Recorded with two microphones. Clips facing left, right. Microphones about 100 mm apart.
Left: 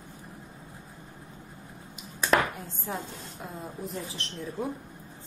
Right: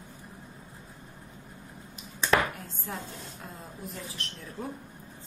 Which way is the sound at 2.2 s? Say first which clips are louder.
Left 1 dB; 10° left (ahead or behind).